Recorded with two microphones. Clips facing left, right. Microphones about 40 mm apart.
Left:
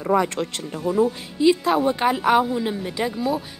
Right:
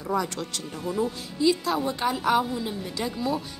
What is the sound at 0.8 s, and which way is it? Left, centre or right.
A woman's voice, left.